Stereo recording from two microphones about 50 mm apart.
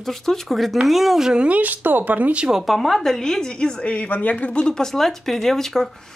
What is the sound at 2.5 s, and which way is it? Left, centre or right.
A woman's voice, centre.